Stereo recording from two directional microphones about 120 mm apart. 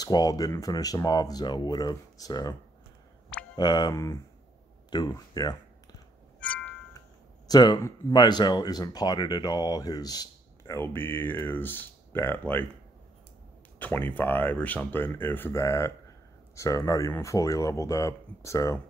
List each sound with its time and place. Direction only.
0.0 s speech: 30° left (ahead or behind)
3.5 s speech: 35° left (ahead or behind)
3.9 s speech: 25° left (ahead or behind)
6.4 s music: 10° left (ahead or behind)
7.4 s speech: 35° left (ahead or behind)
10.6 s speech: 20° left (ahead or behind)
13.7 s speech: 15° left (ahead or behind)